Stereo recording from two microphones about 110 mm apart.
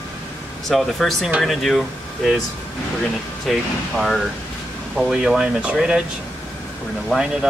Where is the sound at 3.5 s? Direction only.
Centre (ahead or behind).